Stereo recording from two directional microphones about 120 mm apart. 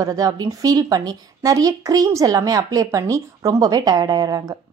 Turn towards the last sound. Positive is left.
turn(degrees=-30)  # may be behind; listen again after turning